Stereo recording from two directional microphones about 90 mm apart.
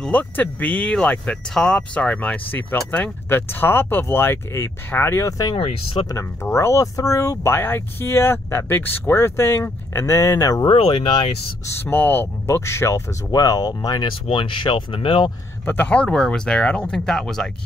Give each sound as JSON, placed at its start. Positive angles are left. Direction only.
{"t": 0.0, "sound": "speech", "side_deg": 15}
{"t": 5.6, "sound": "speech", "side_deg": 90}
{"t": 6.1, "sound": "speech", "side_deg": 30}
{"t": 7.5, "sound": "speech", "side_deg": 25}
{"t": 10.7, "sound": "speech", "side_deg": 90}
{"t": 11.8, "sound": "speech", "side_deg": 25}
{"t": 13.3, "sound": "speech", "side_deg": 45}
{"t": 14.0, "sound": "speech", "side_deg": 70}
{"t": 15.6, "sound": "speech", "side_deg": 20}